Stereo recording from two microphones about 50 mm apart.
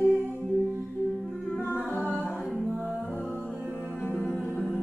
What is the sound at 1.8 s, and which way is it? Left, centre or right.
A capella, left.